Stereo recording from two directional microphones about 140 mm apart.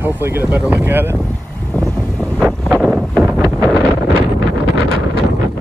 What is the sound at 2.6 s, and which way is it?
Wind noise, centre (ahead or behind).